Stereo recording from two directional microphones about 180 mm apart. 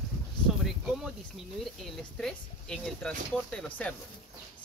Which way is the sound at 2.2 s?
5° left (ahead or behind).